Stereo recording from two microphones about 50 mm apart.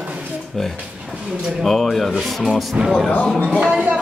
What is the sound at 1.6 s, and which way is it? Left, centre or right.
Speech, centre.